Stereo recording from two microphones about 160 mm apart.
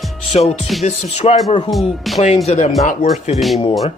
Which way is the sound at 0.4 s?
45° left (ahead or behind).